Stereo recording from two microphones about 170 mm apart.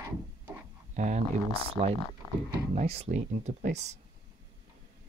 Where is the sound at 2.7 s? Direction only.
35° right (ahead or behind).